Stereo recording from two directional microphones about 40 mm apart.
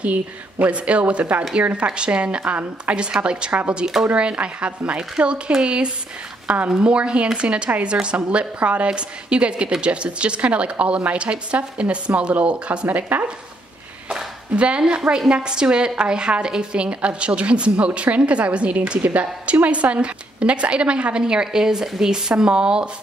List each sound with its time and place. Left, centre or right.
0.0 s a woman's voice: right
3.8 s speech: centre
4.1 s a woman's voice: right
6.8 s a woman's voice: right
14.5 s a woman's voice: right